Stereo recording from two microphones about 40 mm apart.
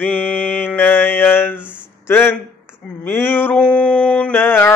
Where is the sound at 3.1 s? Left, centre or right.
Left.